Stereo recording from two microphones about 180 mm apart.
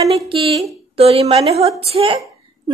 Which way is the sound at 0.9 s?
35° right (ahead or behind).